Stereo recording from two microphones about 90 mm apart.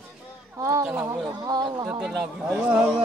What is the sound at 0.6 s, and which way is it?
Speech, 35° right (ahead or behind).